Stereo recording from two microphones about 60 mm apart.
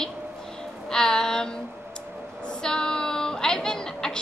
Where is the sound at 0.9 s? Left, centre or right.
Centre.